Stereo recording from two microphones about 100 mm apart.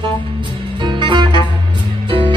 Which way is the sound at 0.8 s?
50° right (ahead or behind).